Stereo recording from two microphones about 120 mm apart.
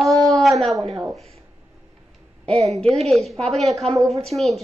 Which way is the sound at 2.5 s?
60° right (ahead or behind).